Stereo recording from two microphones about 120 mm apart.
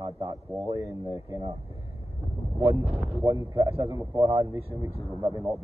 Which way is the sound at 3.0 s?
25° right (ahead or behind).